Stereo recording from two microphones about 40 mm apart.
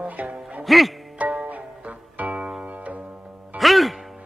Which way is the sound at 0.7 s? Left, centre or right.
Centre.